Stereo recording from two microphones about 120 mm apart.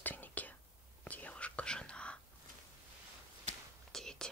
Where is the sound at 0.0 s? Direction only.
15° left (ahead or behind).